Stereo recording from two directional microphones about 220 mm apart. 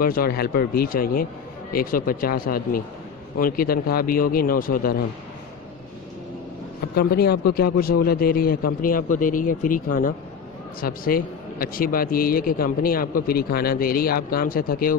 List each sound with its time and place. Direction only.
0.0 s speech: 40° left (ahead or behind)
7.0 s a man's voice: 45° left (ahead or behind)